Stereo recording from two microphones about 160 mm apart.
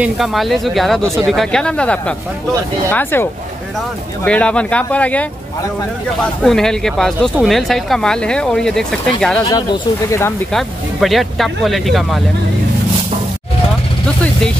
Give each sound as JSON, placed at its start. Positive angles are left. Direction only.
{"t": 0.0, "sound": "speech", "side_deg": 0}
{"t": 6.2, "sound": "speech", "side_deg": 5}
{"t": 9.4, "sound": "speech", "side_deg": 25}
{"t": 10.5, "sound": "speech", "side_deg": 0}